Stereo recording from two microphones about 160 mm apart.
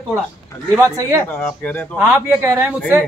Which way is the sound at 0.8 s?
15° right (ahead or behind).